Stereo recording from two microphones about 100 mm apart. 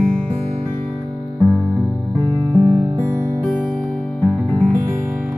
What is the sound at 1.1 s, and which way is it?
Music, 30° right (ahead or behind).